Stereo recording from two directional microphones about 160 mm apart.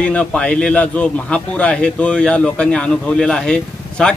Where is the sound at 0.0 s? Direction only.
5° left (ahead or behind).